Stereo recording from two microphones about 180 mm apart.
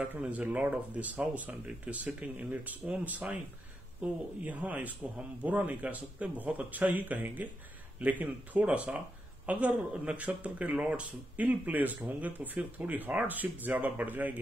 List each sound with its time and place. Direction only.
0.0 s speech: 10° right (ahead or behind)
4.5 s speech: 10° right (ahead or behind)